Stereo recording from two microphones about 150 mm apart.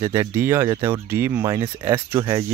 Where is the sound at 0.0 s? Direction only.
20° right (ahead or behind).